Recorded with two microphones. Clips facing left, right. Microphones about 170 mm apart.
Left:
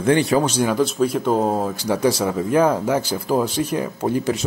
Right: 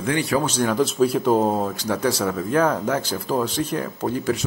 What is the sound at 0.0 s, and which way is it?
Speech, 30° left (ahead or behind).